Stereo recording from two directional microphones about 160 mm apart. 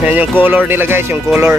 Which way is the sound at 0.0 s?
10° right (ahead or behind).